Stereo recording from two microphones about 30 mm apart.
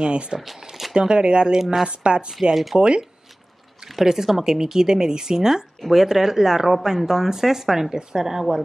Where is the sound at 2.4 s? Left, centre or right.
Right.